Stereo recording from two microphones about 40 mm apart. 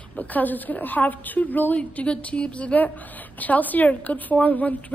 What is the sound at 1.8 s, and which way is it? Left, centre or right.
A woman's voice, left.